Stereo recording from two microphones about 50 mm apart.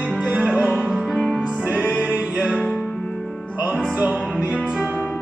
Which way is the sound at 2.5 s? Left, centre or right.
Centre.